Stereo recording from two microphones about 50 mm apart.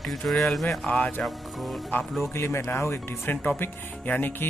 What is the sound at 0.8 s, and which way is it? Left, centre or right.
Speech, left.